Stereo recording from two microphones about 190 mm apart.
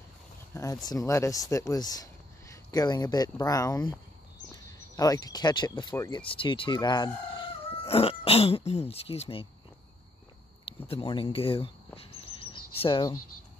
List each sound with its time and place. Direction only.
0.5 s speech: 15° left (ahead or behind); by 9.5 s 30° left (ahead or behind)
10.9 s bird: 30° left (ahead or behind)